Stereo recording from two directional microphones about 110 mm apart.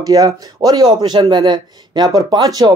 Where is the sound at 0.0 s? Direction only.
35° right (ahead or behind).